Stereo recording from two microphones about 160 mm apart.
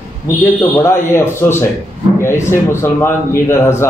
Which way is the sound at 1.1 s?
15° left (ahead or behind).